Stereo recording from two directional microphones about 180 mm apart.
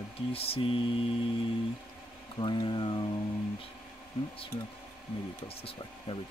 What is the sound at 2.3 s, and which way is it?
Speech, 25° left (ahead or behind).